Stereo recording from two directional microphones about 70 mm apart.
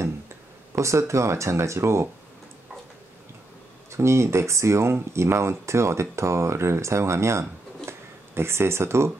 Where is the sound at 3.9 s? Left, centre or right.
Right.